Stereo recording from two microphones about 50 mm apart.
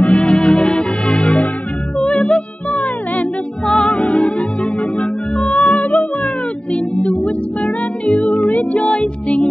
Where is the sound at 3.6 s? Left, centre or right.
Centre.